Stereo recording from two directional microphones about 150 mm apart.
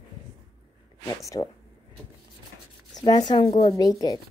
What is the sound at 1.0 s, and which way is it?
Speech, 25° left (ahead or behind).